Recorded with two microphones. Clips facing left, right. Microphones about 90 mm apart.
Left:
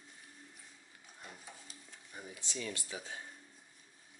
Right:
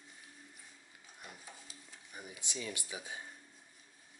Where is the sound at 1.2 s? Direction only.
Centre (ahead or behind).